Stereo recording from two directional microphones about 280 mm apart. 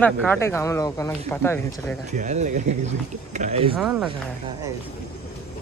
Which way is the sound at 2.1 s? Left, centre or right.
Right.